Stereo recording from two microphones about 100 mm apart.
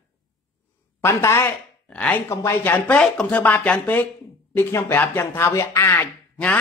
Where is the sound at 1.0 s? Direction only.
25° left (ahead or behind).